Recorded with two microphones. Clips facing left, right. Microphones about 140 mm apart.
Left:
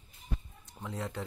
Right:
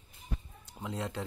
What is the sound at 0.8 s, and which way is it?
Speech, 5° right (ahead or behind).